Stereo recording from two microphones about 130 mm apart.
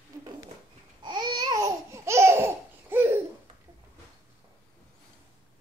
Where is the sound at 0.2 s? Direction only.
35° right (ahead or behind).